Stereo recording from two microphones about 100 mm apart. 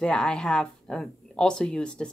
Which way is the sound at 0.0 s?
10° left (ahead or behind).